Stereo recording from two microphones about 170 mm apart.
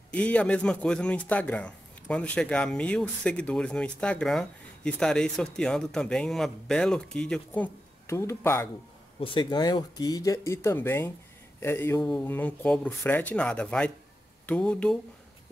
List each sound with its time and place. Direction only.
0.1 s speech: 10° left (ahead or behind)
9.2 s speech: 30° left (ahead or behind); by 15.0 s 5° left (ahead or behind)